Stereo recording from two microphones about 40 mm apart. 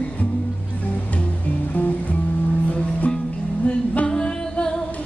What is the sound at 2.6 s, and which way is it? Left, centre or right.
Music, left.